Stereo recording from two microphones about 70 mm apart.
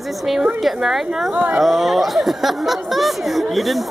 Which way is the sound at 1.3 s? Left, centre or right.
Right.